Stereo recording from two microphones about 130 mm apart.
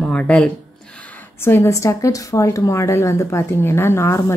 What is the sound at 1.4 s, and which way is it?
A woman's voice, 20° left (ahead or behind).